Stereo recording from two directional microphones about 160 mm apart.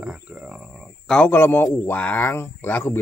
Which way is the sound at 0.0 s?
5° right (ahead or behind).